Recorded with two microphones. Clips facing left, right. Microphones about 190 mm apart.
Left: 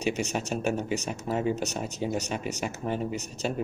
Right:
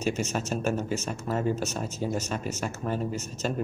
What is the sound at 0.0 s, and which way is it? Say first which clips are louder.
Speech: even; 15° left (ahead or behind).